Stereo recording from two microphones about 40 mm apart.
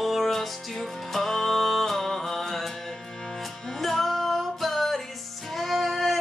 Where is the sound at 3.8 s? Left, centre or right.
Centre.